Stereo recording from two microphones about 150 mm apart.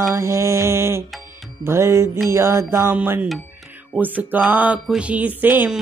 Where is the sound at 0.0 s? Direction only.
20° right (ahead or behind).